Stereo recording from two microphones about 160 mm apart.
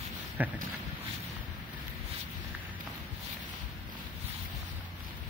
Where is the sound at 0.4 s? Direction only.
10° right (ahead or behind).